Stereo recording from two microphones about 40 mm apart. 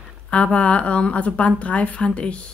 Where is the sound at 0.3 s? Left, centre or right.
Left.